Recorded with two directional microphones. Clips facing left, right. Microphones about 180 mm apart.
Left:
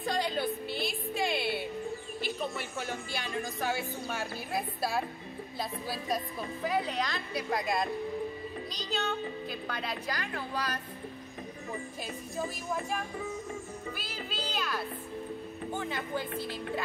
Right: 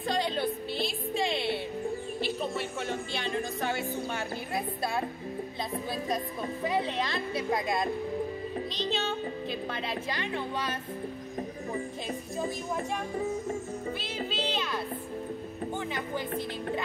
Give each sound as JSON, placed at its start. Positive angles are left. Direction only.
{"t": 0.0, "sound": "music", "side_deg": 0}
{"t": 4.6, "sound": "a woman's voice", "side_deg": 0}
{"t": 6.1, "sound": "speech", "side_deg": -25}
{"t": 7.1, "sound": "a woman's voice", "side_deg": 0}
{"t": 8.7, "sound": "speech", "side_deg": -25}
{"t": 13.8, "sound": "speech", "side_deg": -25}
{"t": 15.8, "sound": "speech", "side_deg": -15}